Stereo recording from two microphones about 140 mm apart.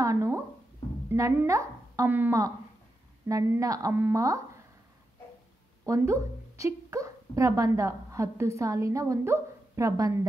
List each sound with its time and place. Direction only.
0.0 s a sound: 20° right (ahead or behind)
1.1 s a child's voice: 20° right (ahead or behind)
3.3 s a woman's voice: 25° right (ahead or behind)
5.9 s a woman's voice: 20° right (ahead or behind)